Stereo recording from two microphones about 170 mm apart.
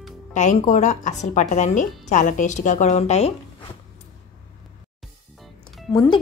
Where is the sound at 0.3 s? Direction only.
45° left (ahead or behind).